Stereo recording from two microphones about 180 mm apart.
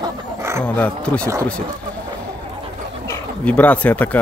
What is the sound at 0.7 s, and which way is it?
Speech, 5° left (ahead or behind).